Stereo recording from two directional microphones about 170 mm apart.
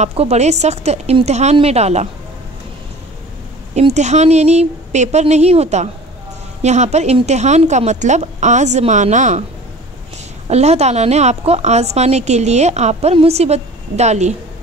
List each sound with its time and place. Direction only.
0.0 s a woman's voice: 40° right (ahead or behind)
3.7 s a woman's voice: 40° right (ahead or behind)
10.5 s a woman's voice: 40° right (ahead or behind)